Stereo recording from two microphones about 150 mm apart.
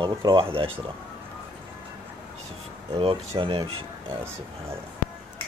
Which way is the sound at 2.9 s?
35° right (ahead or behind).